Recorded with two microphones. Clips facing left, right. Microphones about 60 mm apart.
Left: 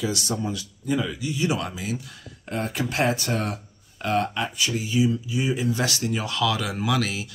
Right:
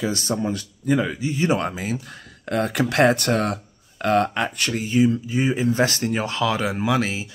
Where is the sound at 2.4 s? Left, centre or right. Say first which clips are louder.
Right 6 dB; right.